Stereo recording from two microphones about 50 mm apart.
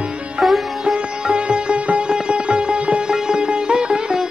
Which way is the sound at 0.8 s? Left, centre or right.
Centre.